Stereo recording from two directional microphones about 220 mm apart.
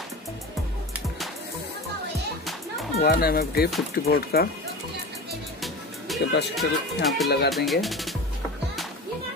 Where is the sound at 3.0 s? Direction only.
45° left (ahead or behind).